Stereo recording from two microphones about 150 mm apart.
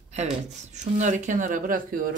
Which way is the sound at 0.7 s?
55° right (ahead or behind).